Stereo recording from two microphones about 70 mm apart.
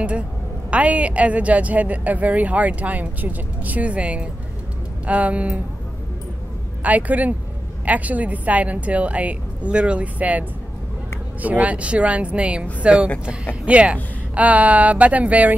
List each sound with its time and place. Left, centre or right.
0.7 s a woman's voice: centre
6.8 s a woman's voice: right
11.4 s a woman's voice: right